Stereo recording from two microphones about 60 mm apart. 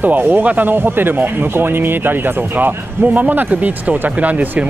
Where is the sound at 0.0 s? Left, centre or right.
Right.